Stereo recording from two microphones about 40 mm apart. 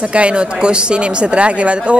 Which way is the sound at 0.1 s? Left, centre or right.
Right.